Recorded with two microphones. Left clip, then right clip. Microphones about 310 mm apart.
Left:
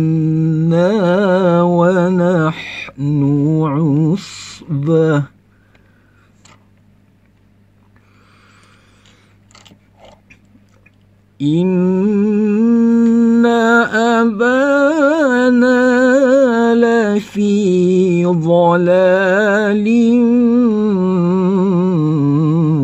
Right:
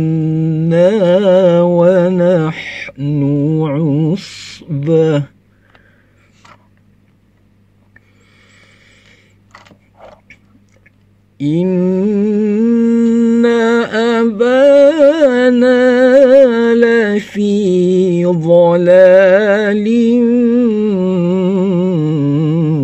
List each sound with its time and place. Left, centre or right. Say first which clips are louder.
0.0 s mantra: even; centre
4.6 s a sound: right 2 dB; right
11.3 s humming: right 1 dB; right